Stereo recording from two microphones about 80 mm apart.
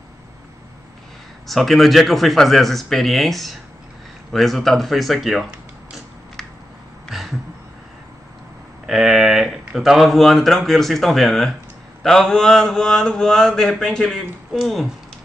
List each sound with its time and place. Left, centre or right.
1.5 s speech: centre
7.1 s a sound: centre
8.8 s speech: centre
12.0 s mantra: centre